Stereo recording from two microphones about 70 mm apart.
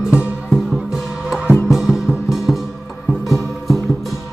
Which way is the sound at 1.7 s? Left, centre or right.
Centre.